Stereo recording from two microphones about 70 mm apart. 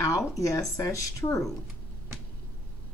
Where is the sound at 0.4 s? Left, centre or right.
Left.